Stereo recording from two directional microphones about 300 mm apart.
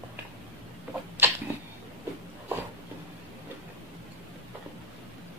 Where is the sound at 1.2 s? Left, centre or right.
Centre.